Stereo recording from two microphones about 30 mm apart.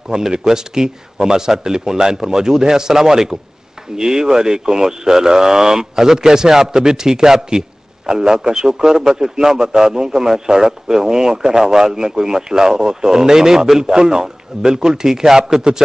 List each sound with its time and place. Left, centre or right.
0.3 s speech: right